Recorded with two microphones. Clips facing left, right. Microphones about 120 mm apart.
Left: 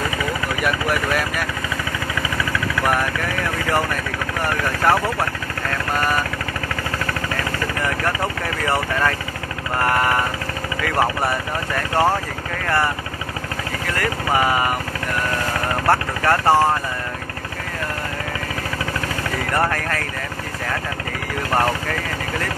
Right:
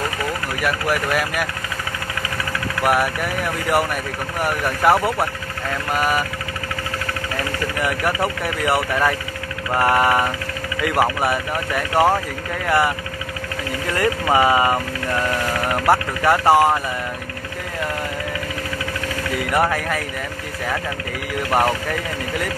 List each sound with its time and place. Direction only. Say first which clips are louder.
0.6 s speech: right 1 dB; 5° right (ahead or behind)
2.9 s speech: right 4 dB; 10° right (ahead or behind)
4.8 s speech: right 2 dB; 10° right (ahead or behind)
8.6 s speech: right 2 dB; 15° right (ahead or behind)
13.9 s speech: right 3 dB; 20° right (ahead or behind)
15.9 s speech: right 1 dB; 10° right (ahead or behind)
19.5 s speech: right 2 dB; 10° right (ahead or behind)